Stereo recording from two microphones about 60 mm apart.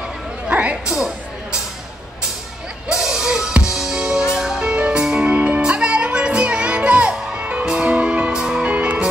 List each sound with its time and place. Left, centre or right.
0.5 s music: right
0.9 s music: centre
2.9 s music: centre
8.6 s music: right